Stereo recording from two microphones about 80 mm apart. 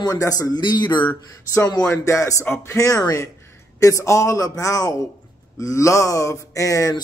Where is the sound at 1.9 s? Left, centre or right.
Left.